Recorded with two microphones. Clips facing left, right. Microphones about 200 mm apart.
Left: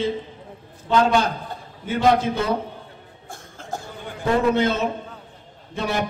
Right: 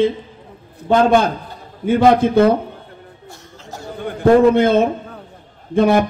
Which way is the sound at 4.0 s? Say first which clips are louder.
Right 10 dB; 55° right (ahead or behind).